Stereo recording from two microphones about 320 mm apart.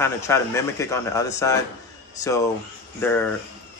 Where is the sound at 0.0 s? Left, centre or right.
Centre.